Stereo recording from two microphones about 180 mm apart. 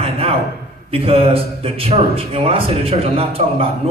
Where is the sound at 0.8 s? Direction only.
35° right (ahead or behind).